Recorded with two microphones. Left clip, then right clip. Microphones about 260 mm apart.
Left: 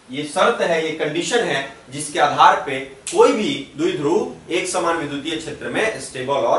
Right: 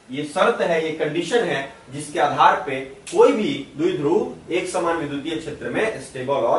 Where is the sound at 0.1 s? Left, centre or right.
Centre.